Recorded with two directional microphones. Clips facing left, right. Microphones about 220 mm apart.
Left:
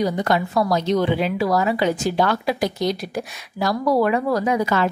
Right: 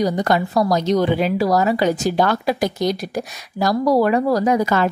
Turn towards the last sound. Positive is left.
turn(degrees=-45)  # may be behind; listen again after turning